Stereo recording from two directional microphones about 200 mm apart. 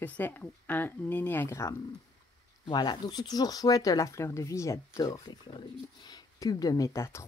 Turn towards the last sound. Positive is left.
turn(degrees=15)  # may be behind; listen again after turning